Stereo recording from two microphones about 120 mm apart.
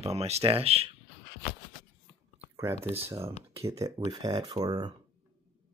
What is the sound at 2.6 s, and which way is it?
Speech, 25° right (ahead or behind).